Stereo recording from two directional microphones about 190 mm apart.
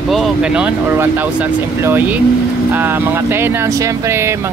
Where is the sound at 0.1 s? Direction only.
5° right (ahead or behind).